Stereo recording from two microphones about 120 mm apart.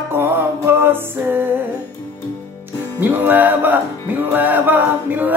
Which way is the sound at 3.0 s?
15° right (ahead or behind).